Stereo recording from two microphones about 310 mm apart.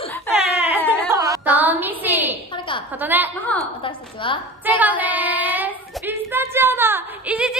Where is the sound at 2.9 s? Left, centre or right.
Centre.